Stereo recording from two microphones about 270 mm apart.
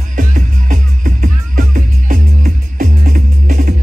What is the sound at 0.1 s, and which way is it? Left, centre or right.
Music, right.